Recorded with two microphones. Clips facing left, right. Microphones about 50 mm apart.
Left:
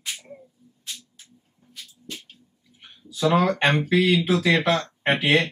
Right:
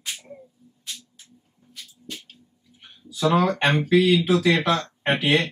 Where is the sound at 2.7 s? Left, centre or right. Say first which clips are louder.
Left 1 dB; centre.